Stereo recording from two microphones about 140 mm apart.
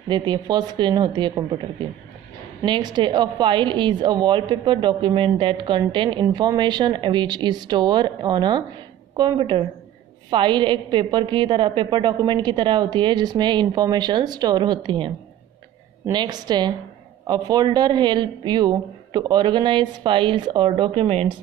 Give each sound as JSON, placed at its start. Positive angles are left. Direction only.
{"t": 0.1, "sound": "a woman's voice", "side_deg": -30}